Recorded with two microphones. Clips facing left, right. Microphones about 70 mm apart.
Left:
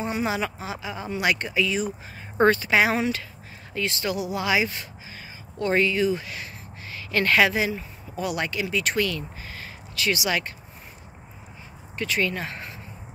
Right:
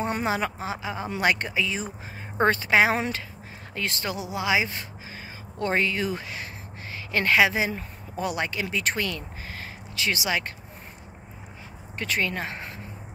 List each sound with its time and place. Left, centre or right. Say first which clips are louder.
0.2 s speech: even; right
7.7 s speech: left 1 dB; right
12.0 s speech: left 2 dB; right